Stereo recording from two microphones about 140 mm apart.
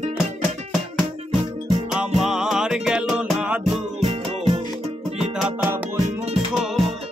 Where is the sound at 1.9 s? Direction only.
5° right (ahead or behind).